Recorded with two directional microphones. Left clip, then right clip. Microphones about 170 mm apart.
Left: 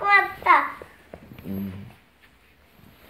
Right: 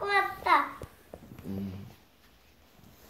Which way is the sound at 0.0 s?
10° left (ahead or behind).